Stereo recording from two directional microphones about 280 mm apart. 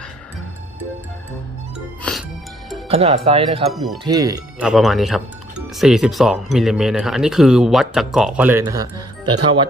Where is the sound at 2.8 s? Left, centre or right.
Right.